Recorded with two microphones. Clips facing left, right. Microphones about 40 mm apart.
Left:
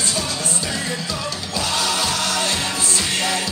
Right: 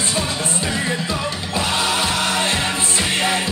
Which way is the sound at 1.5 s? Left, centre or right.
Right.